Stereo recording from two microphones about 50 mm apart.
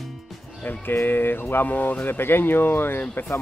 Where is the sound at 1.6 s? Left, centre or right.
Left.